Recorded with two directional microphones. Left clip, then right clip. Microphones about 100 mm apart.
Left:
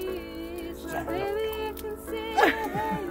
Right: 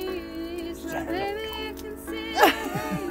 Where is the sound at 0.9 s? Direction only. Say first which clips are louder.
Even; 40° right (ahead or behind).